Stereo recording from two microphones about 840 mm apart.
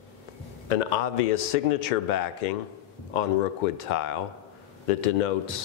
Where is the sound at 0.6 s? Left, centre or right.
Left.